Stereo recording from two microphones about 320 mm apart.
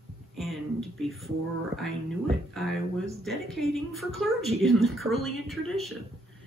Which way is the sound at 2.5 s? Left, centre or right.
Centre.